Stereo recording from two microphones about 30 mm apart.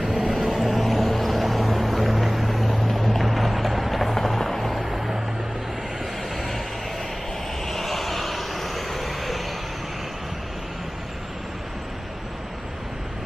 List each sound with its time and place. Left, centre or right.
0.0 s vehicle: centre
0.5 s vehicle: centre
3.3 s music: centre
4.0 s music: centre
4.8 s vehicle: centre
6.3 s vehicle: centre
7.6 s vehicle: centre